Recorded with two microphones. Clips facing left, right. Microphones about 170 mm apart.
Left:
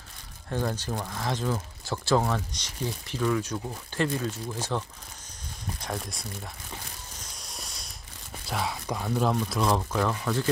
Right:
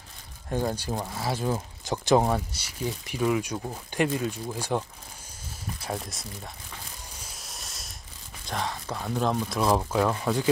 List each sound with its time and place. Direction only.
0.5 s speech: 15° right (ahead or behind)
5.8 s speech: 5° right (ahead or behind)
7.3 s mechanisms: centre (ahead or behind)
8.5 s speech: 10° left (ahead or behind)
9.0 s speech: centre (ahead or behind)
9.8 s speech: 15° right (ahead or behind)